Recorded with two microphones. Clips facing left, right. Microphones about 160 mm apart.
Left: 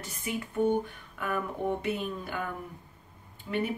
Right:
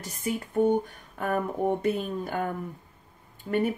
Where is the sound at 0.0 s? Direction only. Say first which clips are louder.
Right 4 dB; 40° right (ahead or behind).